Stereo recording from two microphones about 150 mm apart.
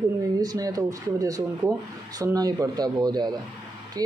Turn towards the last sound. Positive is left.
turn(degrees=-25)  # may be behind; listen again after turning